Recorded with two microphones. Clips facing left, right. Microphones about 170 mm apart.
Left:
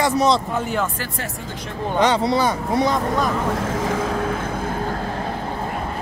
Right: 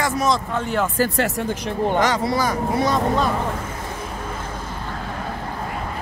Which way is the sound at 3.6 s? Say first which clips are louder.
Left 8 dB; 90° left.